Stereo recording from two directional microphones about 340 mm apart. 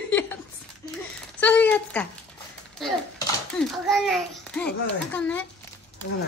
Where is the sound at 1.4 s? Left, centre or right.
Centre.